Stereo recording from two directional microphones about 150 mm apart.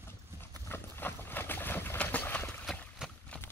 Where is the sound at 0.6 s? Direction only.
15° left (ahead or behind).